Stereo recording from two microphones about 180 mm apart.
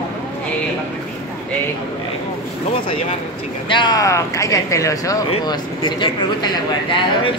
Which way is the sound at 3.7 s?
25° left (ahead or behind).